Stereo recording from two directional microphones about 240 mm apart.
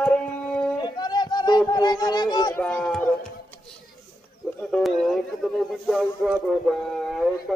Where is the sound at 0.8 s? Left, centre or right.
Centre.